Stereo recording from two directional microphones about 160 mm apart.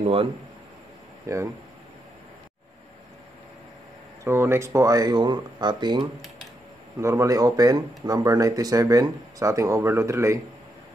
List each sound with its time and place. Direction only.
0.0 s a man's voice: 40° right (ahead or behind)
1.3 s speech: 20° right (ahead or behind)
4.2 s speech: 15° right (ahead or behind)